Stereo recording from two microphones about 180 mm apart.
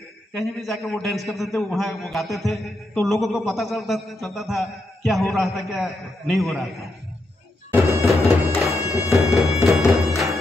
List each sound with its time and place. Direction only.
0.3 s a man's voice: centre (ahead or behind)
8.5 s music: 15° left (ahead or behind)
9.1 s music: centre (ahead or behind)